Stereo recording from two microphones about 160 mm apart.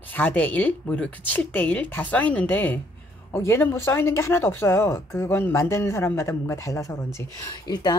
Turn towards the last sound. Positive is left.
turn(degrees=25)  # may be behind; listen again after turning